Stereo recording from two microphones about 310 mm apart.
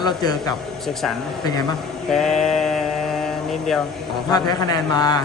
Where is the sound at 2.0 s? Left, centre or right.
Centre.